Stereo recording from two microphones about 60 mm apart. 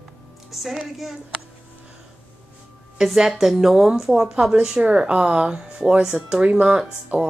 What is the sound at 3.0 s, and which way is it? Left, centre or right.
A woman's voice, centre.